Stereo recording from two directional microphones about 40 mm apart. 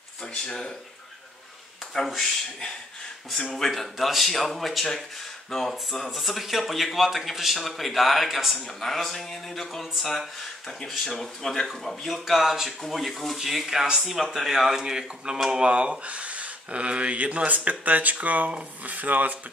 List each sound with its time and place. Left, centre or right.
0.5 s speech: centre
3.5 s a man's voice: centre
8.8 s a man's voice: centre; by 19.3 s right